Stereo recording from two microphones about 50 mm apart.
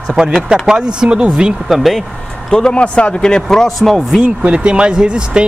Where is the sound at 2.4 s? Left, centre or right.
Centre.